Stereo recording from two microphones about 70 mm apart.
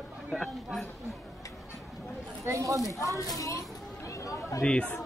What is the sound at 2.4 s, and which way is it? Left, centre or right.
Speech, right.